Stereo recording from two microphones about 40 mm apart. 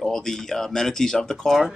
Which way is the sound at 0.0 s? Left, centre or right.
Centre.